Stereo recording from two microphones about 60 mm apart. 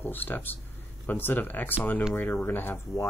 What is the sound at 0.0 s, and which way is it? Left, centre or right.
Speech, left.